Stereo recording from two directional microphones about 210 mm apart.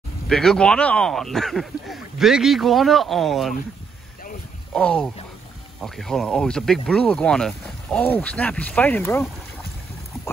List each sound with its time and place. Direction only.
0.3 s speech: centre (ahead or behind)
4.7 s speech: 5° left (ahead or behind)